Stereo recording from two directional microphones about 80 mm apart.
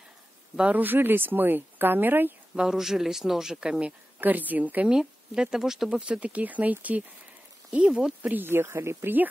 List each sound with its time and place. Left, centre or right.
0.6 s speech: centre
2.5 s speech: centre
4.2 s speech: right
4.9 s speech: centre; by 9.3 s right